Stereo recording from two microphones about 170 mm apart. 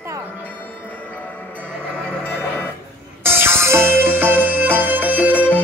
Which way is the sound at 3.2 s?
15° right (ahead or behind).